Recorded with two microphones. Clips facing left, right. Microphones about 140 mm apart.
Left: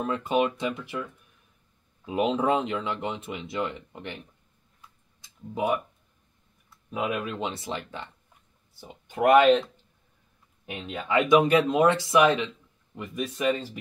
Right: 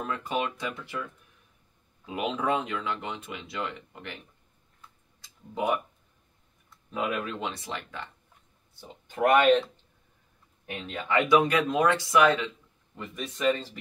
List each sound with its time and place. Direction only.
0.0 s speech: 25° left (ahead or behind)
2.1 s speech: 30° left (ahead or behind)
6.9 s speech: 15° left (ahead or behind)
7.4 s speech: 25° left (ahead or behind)
8.8 s speech: 5° left (ahead or behind)
11.2 s speech: 25° left (ahead or behind); by 13.6 s 10° left (ahead or behind)